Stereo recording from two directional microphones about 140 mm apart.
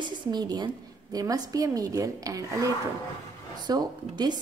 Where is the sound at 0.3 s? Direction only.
30° right (ahead or behind).